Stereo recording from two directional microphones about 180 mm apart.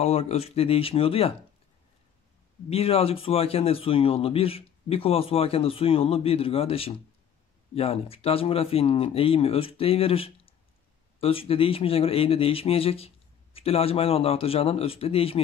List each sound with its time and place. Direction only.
0.0 s a man's voice: 35° left (ahead or behind)
2.7 s a man's voice: 35° left (ahead or behind)